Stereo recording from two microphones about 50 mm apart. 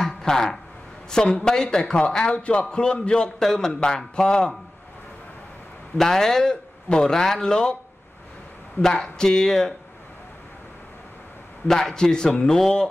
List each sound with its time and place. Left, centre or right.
0.0 s a sound: centre
1.1 s a man's voice: centre
5.9 s a man's voice: centre
8.8 s a man's voice: centre
11.6 s a man's voice: centre